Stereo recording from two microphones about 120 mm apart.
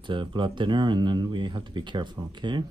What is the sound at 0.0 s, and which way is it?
Speech, 45° right (ahead or behind).